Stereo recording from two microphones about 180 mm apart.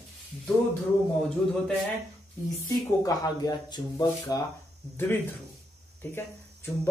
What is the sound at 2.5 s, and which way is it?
Speech, 20° left (ahead or behind).